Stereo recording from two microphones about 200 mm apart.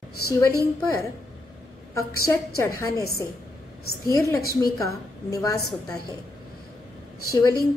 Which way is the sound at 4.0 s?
15° left (ahead or behind).